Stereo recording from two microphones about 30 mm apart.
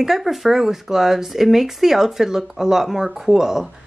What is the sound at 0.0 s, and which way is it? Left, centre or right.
Speech, centre.